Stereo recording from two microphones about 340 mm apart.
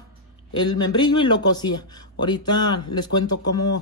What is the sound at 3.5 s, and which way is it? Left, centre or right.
Speech, left.